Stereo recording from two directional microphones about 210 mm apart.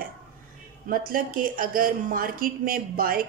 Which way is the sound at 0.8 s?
40° right (ahead or behind).